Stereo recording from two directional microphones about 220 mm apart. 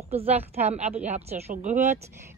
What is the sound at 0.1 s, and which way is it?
A woman's voice, 25° right (ahead or behind).